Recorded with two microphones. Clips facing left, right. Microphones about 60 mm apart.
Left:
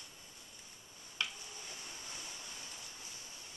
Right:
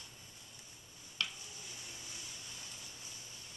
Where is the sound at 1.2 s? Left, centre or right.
Centre.